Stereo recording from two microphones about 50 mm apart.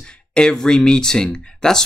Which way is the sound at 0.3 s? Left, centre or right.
Centre.